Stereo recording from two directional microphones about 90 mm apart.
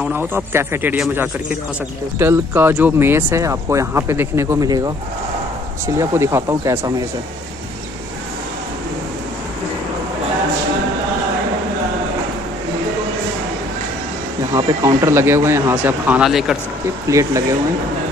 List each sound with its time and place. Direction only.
0.0 s a man's voice: 20° right (ahead or behind)
4.6 s speech: 45° right (ahead or behind)
5.9 s speech: 30° right (ahead or behind)
14.5 s speech: 35° right (ahead or behind)
16.2 s speech: 5° right (ahead or behind)
17.1 s speech: 35° right (ahead or behind)